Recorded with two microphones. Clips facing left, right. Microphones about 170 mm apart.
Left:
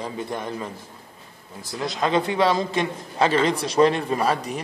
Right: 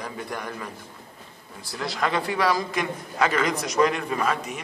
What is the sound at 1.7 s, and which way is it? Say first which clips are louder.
A man's voice: left 3 dB; 20° left (ahead or behind).